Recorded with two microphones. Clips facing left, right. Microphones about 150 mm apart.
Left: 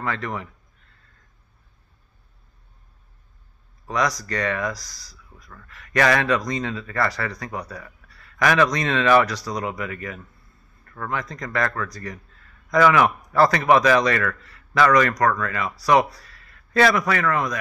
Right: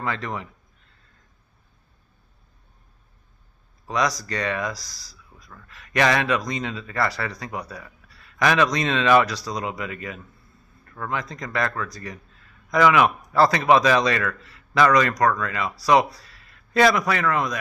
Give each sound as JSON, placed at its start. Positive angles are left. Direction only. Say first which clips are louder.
{"t": 0.0, "sound": "a man's voice", "louder": "left 1 dB", "side_deg": -20}
{"t": 3.8, "sound": "speech", "louder": "even", "side_deg": -15}
{"t": 5.7, "sound": "a man's voice", "louder": "left 1 dB", "side_deg": -20}
{"t": 7.5, "sound": "a sound", "louder": "left 1 dB", "side_deg": -15}
{"t": 8.7, "sound": "a man's voice", "louder": "even", "side_deg": -20}